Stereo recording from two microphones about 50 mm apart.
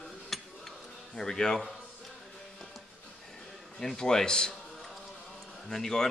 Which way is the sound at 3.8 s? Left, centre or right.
Centre.